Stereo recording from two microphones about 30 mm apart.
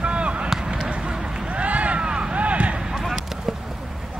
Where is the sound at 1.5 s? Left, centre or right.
Right.